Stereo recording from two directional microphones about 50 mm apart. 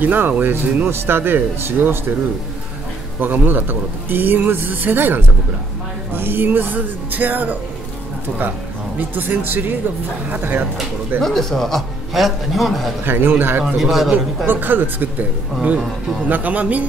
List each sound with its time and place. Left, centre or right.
0.0 s a man's voice: right
0.8 s speech: right
3.2 s a man's voice: right
8.9 s a man's voice: right
11.1 s a man's voice: centre
13.0 s speech: right
13.7 s a man's voice: centre
14.4 s a man's voice: right